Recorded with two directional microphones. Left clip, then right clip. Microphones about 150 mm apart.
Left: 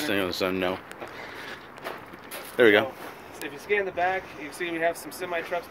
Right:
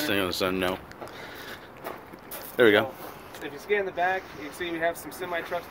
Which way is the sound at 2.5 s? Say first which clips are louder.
Left 1 dB; centre (ahead or behind).